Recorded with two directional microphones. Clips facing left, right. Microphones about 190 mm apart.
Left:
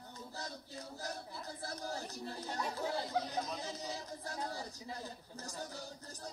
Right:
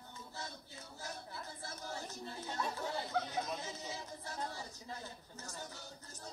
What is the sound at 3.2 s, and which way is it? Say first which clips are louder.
Speech: left 1 dB; 35° left (ahead or behind).